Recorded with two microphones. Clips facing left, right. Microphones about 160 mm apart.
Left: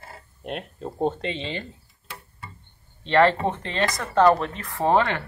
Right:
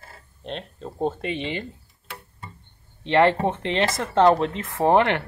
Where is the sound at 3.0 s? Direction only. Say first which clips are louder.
Even; 15° right (ahead or behind).